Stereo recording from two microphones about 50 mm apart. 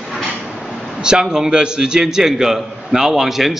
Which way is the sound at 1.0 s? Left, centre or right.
Centre.